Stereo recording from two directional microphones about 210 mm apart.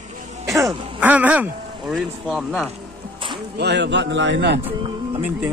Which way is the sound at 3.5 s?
55° right (ahead or behind).